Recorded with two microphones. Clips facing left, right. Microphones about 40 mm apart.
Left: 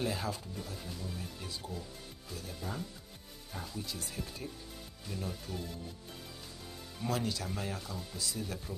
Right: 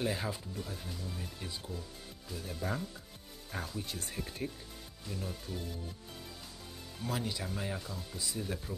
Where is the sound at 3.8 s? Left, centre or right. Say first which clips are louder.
Even; right.